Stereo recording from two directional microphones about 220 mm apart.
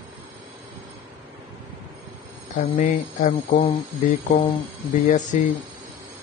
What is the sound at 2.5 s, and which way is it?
Speech, 35° left (ahead or behind).